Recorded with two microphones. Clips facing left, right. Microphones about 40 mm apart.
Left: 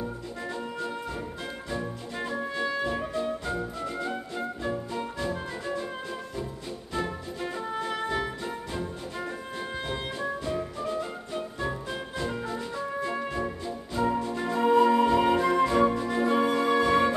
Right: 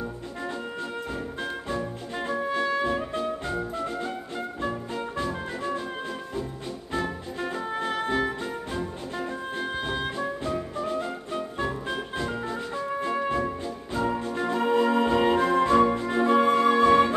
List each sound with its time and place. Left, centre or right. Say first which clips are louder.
2.1 s brass instrument: right 4 dB; right
3.4 s music: right 2 dB; right
4.6 s music: right 1 dB; centre
6.9 s music: right 2 dB; right
11.6 s music: right 3 dB; right
13.9 s music: even; centre
15.3 s music: right 2 dB; right
16.1 s music: right 4 dB; right